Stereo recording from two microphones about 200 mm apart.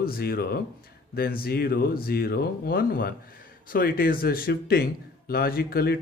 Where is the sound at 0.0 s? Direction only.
50° left (ahead or behind).